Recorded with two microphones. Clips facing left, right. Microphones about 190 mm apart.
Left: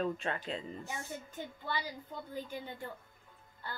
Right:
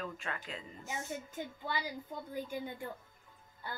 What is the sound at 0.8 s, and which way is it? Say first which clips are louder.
A woman's voice: right 2 dB; 10° right (ahead or behind).